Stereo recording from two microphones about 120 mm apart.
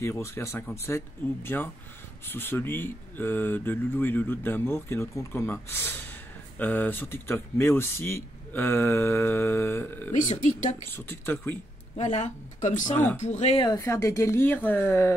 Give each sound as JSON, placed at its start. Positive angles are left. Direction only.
{"t": 0.0, "sound": "speech", "side_deg": 20}
{"t": 10.2, "sound": "speech", "side_deg": 85}
{"t": 10.9, "sound": "speech", "side_deg": 20}
{"t": 12.0, "sound": "speech", "side_deg": 75}
{"t": 13.2, "sound": "speech", "side_deg": 75}
{"t": 13.7, "sound": "speech", "side_deg": 25}